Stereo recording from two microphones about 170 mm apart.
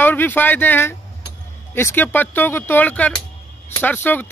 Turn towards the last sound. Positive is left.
turn(degrees=10)  # may be behind; listen again after turning